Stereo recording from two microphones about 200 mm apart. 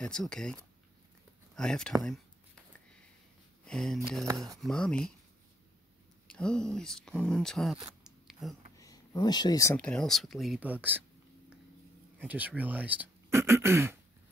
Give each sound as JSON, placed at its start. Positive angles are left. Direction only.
{"t": 0.0, "sound": "speech", "side_deg": 5}
{"t": 3.6, "sound": "speech", "side_deg": 0}
{"t": 6.2, "sound": "speech", "side_deg": 5}
{"t": 8.0, "sound": "a sound", "side_deg": 0}
{"t": 8.7, "sound": "a sound", "side_deg": 20}
{"t": 9.8, "sound": "speech", "side_deg": 5}
{"t": 12.2, "sound": "speech", "side_deg": -10}